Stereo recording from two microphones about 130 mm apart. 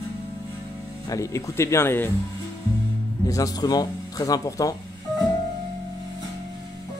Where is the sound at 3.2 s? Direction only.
25° left (ahead or behind).